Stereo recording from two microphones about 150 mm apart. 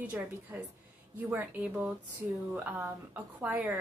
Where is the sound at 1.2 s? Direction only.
10° right (ahead or behind).